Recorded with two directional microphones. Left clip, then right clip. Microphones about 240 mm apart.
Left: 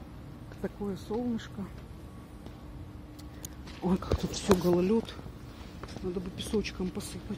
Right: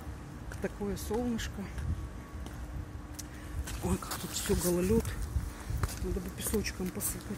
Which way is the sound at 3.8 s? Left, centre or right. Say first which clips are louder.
Left 5 dB; left.